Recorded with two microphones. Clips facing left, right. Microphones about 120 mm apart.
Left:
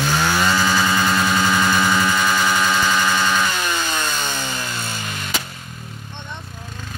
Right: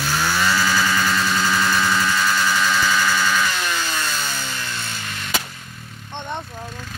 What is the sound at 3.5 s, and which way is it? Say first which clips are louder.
Chainsaw: left 2 dB; 5° left (ahead or behind).